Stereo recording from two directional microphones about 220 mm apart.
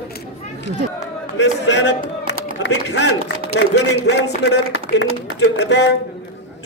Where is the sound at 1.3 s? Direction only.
50° left (ahead or behind).